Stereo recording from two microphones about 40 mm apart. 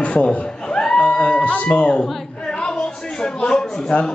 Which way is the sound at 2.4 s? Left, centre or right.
Centre.